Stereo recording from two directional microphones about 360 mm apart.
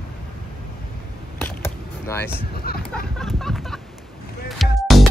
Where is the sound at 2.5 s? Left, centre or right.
Left.